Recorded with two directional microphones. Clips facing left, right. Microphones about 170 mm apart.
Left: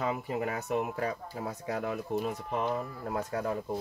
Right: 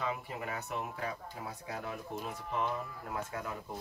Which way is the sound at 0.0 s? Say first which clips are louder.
Left 6 dB; 40° left (ahead or behind).